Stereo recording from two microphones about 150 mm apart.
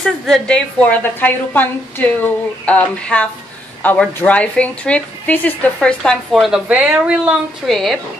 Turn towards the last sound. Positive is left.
turn(degrees=0)  # may be behind; listen again after turning